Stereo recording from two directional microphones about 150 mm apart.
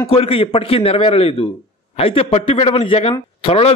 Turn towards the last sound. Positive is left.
turn(degrees=40)  # may be behind; listen again after turning